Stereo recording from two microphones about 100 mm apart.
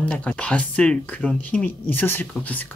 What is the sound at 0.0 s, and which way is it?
Speech, 15° left (ahead or behind).